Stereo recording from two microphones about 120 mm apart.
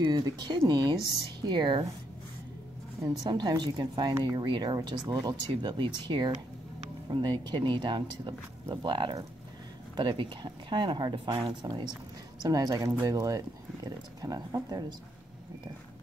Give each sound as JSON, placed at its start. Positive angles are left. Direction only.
{"t": 0.0, "sound": "speech", "side_deg": -35}
{"t": 3.0, "sound": "speech", "side_deg": -35}